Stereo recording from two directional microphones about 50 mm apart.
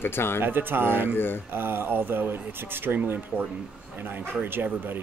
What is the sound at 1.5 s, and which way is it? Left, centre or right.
Speech, right.